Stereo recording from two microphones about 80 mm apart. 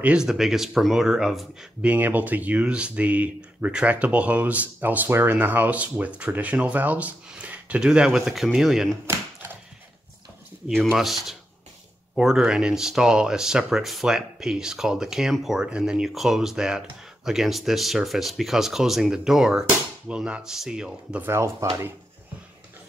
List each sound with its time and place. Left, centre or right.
0.0 s speech: centre
1.8 s speech: centre
9.0 s a sound: right
10.7 s speech: centre
20.1 s speech: centre
21.2 s speech: right